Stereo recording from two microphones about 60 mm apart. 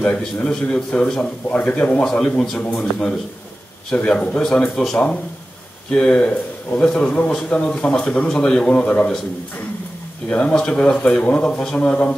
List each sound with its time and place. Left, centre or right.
0.0 s a man's voice: centre
2.0 s a man's voice: centre
2.6 s a man's voice: centre
10.5 s speech: centre